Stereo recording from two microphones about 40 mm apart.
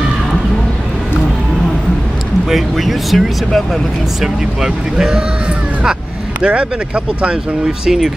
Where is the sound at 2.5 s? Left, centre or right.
Centre.